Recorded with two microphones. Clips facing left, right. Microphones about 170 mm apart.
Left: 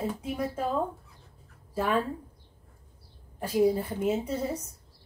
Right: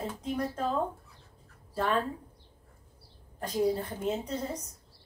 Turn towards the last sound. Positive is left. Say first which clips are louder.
# left 4 dB
turn(degrees=10)  # may be behind; listen again after turning